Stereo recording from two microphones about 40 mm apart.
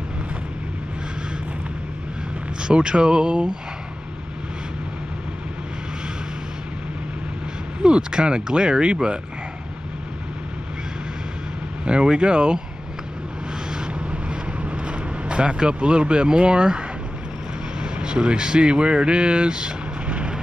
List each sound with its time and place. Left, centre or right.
2.6 s speech: right
7.8 s speech: right
11.8 s speech: right
13.7 s vehicle: right
17.7 s speech: right
20.1 s vehicle: right